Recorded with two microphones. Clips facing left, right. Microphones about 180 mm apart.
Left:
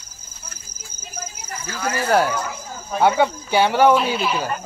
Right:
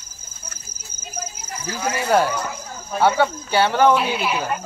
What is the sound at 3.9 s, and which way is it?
Speech, 10° right (ahead or behind).